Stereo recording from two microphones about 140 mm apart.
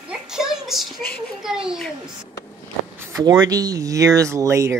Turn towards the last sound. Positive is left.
turn(degrees=-20)  # may be behind; listen again after turning